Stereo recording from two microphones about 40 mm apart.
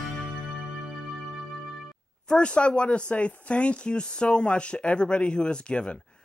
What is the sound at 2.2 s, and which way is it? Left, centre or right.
Speech, left.